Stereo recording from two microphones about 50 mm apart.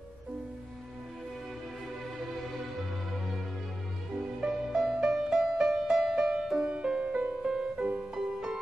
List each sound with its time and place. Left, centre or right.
4.4 s music: centre